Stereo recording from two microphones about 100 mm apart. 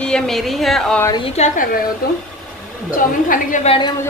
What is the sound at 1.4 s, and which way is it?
Speech, 90° left.